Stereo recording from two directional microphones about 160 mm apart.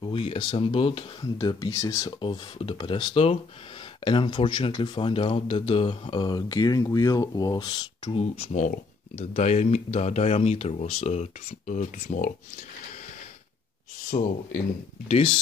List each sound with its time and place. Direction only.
0.0 s speech: 35° left (ahead or behind)
2.2 s speech: 30° left (ahead or behind)
8.2 s speech: 45° left (ahead or behind)
14.1 s speech: 65° left (ahead or behind)
15.0 s speech: 35° left (ahead or behind)